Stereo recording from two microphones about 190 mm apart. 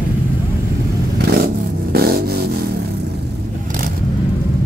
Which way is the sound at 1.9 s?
55° right (ahead or behind).